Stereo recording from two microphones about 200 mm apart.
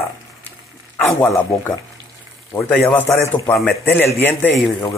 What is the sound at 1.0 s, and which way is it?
A man's voice, 5° left (ahead or behind).